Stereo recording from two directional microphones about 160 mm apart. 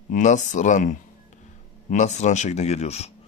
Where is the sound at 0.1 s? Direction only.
50° left (ahead or behind).